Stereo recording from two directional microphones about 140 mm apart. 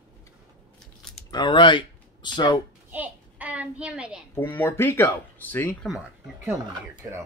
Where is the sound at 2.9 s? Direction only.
10° right (ahead or behind).